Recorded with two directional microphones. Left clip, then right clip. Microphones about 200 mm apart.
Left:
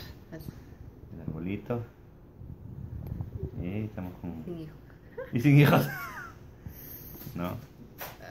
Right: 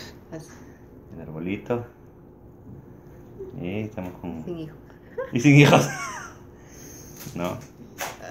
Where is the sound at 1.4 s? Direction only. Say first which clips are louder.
Right 7 dB; 20° left (ahead or behind).